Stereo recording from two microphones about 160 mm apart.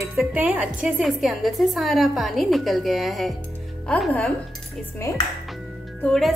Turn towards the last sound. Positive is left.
turn(degrees=5)  # may be behind; listen again after turning